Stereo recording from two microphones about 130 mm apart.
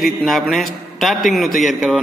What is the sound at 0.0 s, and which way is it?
A man's voice, centre (ahead or behind).